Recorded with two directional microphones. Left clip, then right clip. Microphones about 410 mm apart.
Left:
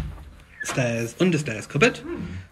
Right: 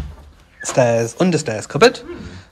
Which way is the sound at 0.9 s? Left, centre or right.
Centre.